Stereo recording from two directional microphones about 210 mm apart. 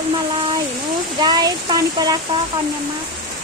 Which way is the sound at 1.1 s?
20° right (ahead or behind).